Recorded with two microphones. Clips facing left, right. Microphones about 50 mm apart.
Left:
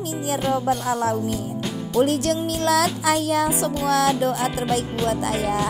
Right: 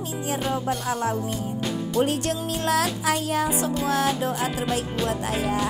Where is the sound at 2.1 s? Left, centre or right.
Left.